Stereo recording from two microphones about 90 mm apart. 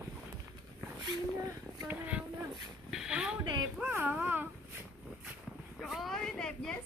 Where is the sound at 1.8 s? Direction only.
15° right (ahead or behind).